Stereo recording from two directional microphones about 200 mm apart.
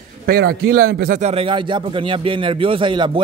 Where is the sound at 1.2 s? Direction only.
30° right (ahead or behind).